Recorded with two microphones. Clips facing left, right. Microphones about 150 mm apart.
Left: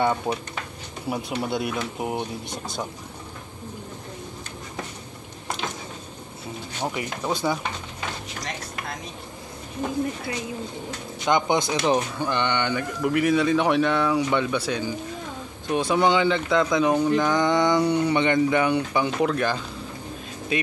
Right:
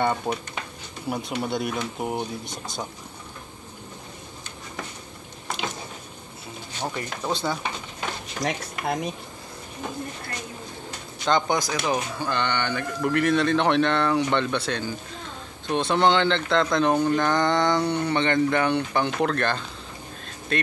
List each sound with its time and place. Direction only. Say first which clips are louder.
0.3 s speech: left 1 dB; centre (ahead or behind)
6.8 s speech: left 2 dB; 10° left (ahead or behind)
8.4 s speech: right 5 dB; 55° right (ahead or behind)
11.2 s speech: left 1 dB; 15° left (ahead or behind)
13.0 s speech: left 1 dB; 5° left (ahead or behind)